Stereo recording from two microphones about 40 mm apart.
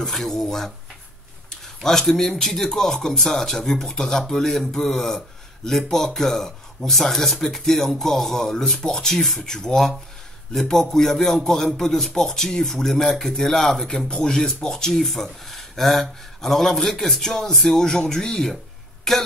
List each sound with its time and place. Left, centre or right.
0.0 s speech: centre
1.8 s speech: centre